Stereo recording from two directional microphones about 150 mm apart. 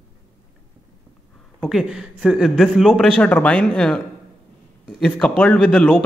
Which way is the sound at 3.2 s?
10° left (ahead or behind).